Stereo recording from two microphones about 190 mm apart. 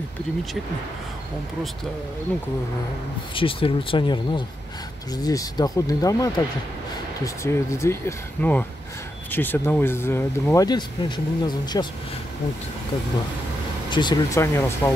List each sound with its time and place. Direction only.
3.3 s speech: 30° left (ahead or behind)
13.8 s speech: 25° left (ahead or behind)